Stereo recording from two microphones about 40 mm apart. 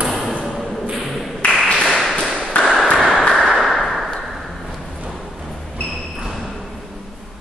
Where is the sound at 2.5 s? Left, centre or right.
Left.